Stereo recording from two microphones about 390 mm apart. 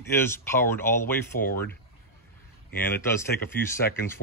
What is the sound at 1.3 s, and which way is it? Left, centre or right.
Speech, left.